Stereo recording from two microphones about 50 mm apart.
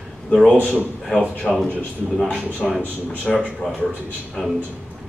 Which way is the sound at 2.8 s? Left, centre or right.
Left.